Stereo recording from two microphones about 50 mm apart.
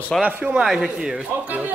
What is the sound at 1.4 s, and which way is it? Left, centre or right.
Speech, right.